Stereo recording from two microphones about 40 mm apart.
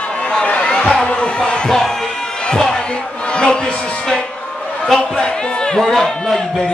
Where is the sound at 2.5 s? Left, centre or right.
Centre.